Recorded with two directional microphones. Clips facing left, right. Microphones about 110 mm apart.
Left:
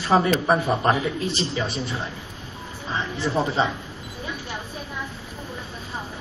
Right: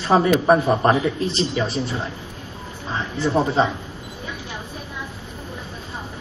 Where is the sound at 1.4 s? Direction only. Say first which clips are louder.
Right 4 dB; centre (ahead or behind).